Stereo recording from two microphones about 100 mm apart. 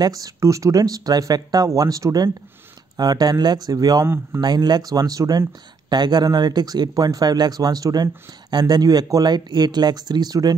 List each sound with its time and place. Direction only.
0.0 s speech: 40° right (ahead or behind)